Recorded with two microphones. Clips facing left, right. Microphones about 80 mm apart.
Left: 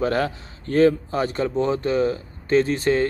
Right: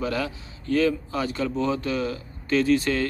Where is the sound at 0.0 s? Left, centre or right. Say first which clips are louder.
Left 5 dB; left.